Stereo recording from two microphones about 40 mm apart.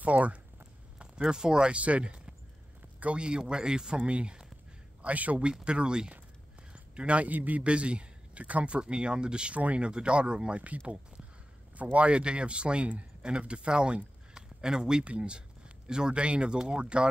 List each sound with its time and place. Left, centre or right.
0.0 s speech: right
1.3 s speech: centre
1.8 s speech: right
5.4 s speech: right
6.7 s a sound: right
7.2 s a man's voice: right
7.6 s speech: right
9.6 s speech: right
9.8 s speech: right